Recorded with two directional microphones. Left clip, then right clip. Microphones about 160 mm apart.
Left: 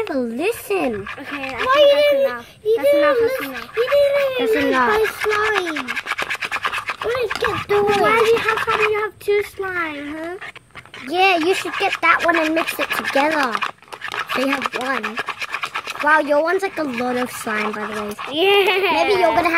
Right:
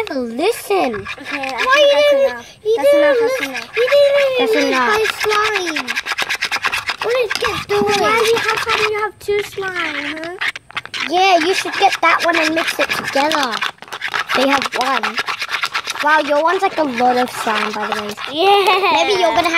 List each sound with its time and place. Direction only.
0.1 s a child's voice: 10° right (ahead or behind)
3.3 s speech: 35° right (ahead or behind)
4.3 s a child's voice: 5° right (ahead or behind)
5.0 s toothbrush: 30° right (ahead or behind)
7.4 s speech: 35° right (ahead or behind)
8.9 s speech: 10° left (ahead or behind)
11.3 s speech: 35° right (ahead or behind)
15.0 s toothbrush: 30° right (ahead or behind)
16.1 s a child's voice: 5° right (ahead or behind)
16.9 s speech: 30° right (ahead or behind)
18.3 s a child's voice: 5° left (ahead or behind)